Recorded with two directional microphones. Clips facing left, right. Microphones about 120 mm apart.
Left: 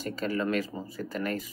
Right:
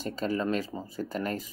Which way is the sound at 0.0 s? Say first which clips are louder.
Even; 25° right (ahead or behind).